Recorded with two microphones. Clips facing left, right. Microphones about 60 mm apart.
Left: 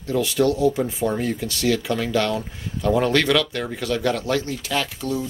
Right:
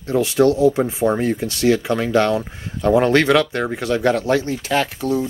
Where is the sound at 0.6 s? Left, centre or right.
Right.